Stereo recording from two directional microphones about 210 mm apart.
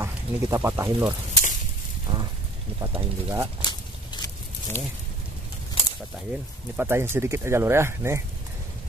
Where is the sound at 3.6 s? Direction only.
20° left (ahead or behind).